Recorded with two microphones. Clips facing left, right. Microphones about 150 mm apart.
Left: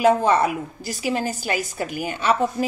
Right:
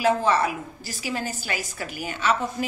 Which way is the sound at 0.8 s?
45° left (ahead or behind).